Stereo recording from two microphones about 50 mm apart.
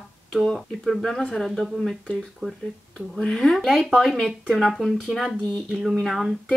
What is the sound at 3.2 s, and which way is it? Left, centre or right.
Speech, centre.